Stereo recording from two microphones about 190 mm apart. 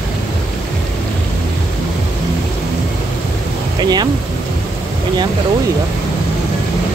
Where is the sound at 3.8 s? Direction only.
20° right (ahead or behind).